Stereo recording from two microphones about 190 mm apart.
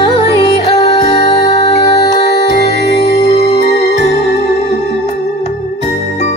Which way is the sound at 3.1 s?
35° left (ahead or behind).